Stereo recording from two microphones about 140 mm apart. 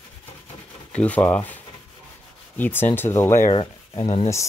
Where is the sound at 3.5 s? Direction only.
40° left (ahead or behind).